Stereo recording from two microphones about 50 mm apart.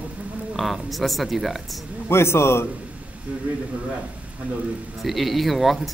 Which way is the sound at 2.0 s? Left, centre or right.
Left.